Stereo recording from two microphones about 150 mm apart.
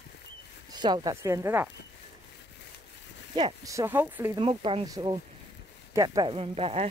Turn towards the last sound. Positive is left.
turn(degrees=-40)  # may be behind; listen again after turning